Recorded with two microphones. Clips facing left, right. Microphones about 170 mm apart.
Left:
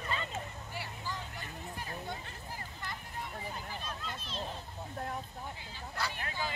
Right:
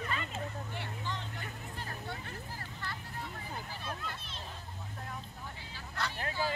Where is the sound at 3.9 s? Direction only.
55° right (ahead or behind).